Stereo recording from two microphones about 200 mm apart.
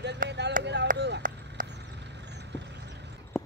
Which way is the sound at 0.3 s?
60° right (ahead or behind).